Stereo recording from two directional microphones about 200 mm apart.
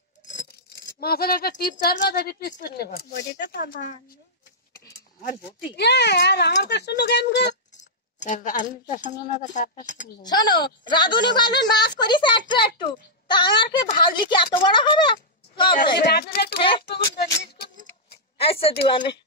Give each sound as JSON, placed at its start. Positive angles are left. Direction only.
{"t": 0.2, "sound": "speech", "side_deg": 40}
{"t": 5.3, "sound": "speech", "side_deg": 55}
{"t": 7.7, "sound": "cutlery", "side_deg": 40}
{"t": 9.4, "sound": "speech", "side_deg": 40}
{"t": 10.2, "sound": "a child's voice", "side_deg": 20}
{"t": 16.0, "sound": "speech", "side_deg": 55}
{"t": 16.5, "sound": "a child's voice", "side_deg": 25}
{"t": 16.8, "sound": "speech", "side_deg": 55}
{"t": 17.6, "sound": "a sound", "side_deg": 55}
{"t": 18.4, "sound": "a woman's voice", "side_deg": 30}